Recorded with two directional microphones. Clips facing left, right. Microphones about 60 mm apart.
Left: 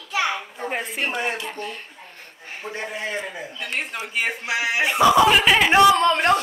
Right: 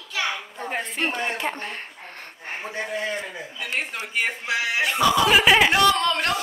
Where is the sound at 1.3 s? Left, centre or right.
Right.